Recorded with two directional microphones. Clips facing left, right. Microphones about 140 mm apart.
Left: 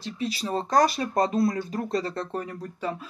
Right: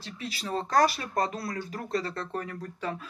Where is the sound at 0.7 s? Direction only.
20° left (ahead or behind).